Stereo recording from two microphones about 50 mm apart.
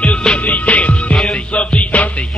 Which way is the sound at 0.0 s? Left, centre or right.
Left.